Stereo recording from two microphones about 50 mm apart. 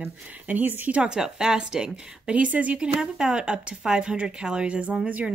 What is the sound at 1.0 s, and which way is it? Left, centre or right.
Speech, centre.